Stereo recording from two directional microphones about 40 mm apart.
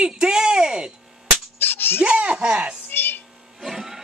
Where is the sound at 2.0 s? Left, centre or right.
Right.